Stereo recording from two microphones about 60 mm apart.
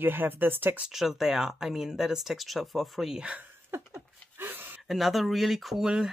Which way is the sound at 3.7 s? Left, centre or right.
Right.